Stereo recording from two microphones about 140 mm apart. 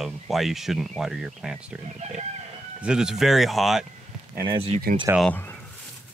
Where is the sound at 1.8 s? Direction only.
55° right (ahead or behind).